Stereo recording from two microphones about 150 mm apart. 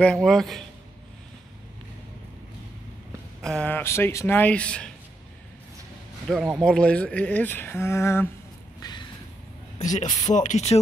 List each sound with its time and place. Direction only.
0.0 s a man's voice: 5° left (ahead or behind)
3.4 s speech: 10° left (ahead or behind)
6.2 s speech: 5° right (ahead or behind); by 8.3 s 15° left (ahead or behind)
8.8 s vehicle: 25° left (ahead or behind)
9.8 s speech: 55° left (ahead or behind)